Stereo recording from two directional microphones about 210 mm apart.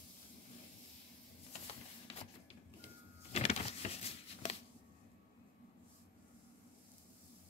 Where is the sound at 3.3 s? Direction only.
30° left (ahead or behind).